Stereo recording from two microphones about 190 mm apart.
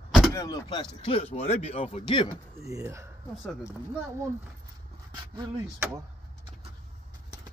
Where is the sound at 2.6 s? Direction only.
15° right (ahead or behind).